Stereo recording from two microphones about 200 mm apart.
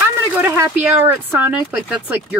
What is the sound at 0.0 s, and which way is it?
Speech, 15° right (ahead or behind).